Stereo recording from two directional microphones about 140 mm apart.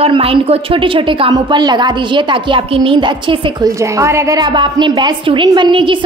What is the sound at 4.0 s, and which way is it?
A woman's voice, 20° right (ahead or behind).